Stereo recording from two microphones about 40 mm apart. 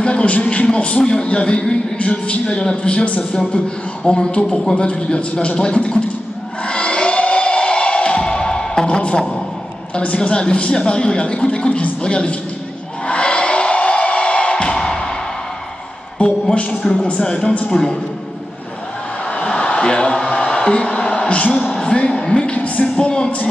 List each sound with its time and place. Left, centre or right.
0.0 s a man's voice: left
6.6 s music: left
8.8 s a man's voice: left
13.0 s music: left
16.2 s a woman's voice: left
19.3 s a sound: left
20.2 s music: centre; by 21.7 s left
21.9 s a sound: left
22.5 s a sound: left
23.0 s music: left